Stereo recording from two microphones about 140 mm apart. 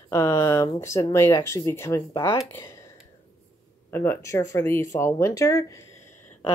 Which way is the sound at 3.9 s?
15° left (ahead or behind).